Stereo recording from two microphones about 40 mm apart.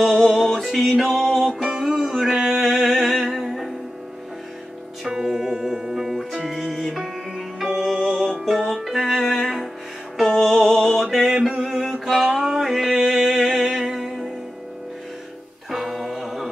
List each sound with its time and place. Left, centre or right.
0.2 s music: centre
5.0 s music: centre
11.3 s a sound: centre
11.6 s music: centre
15.7 s music: centre